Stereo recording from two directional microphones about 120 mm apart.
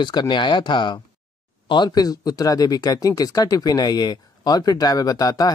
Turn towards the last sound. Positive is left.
turn(degrees=35)  # may be behind; listen again after turning